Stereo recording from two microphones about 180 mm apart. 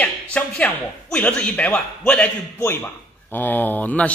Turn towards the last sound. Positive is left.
turn(degrees=10)  # may be behind; listen again after turning